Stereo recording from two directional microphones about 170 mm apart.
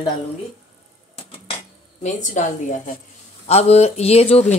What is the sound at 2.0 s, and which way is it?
A woman's voice, 45° left (ahead or behind).